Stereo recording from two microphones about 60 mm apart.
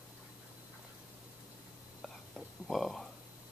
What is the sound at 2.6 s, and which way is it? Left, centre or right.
Speech, centre.